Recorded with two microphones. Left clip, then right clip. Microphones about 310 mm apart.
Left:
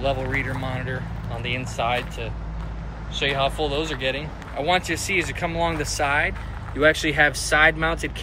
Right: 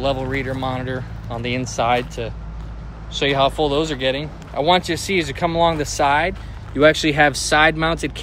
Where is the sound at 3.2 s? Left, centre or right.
Centre.